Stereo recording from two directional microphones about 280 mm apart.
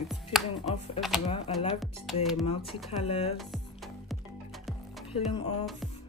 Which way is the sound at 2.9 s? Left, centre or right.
Left.